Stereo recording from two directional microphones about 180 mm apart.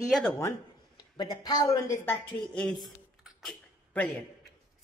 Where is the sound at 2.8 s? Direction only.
Centre (ahead or behind).